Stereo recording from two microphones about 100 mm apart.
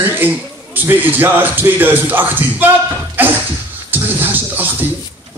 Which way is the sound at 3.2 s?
20° right (ahead or behind).